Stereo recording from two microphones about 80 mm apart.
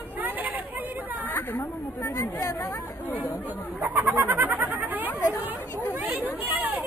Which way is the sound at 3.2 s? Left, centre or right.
Right.